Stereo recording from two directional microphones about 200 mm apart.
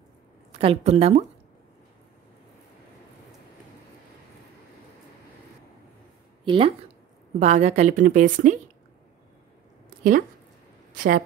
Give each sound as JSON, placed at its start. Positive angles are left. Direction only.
{"t": 0.5, "sound": "a woman's voice", "side_deg": -30}
{"t": 6.4, "sound": "a woman's voice", "side_deg": -25}
{"t": 11.0, "sound": "a woman's voice", "side_deg": -45}